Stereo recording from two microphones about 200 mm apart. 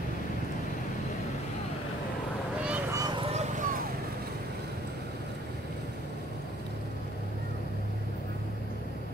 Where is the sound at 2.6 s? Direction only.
5° right (ahead or behind).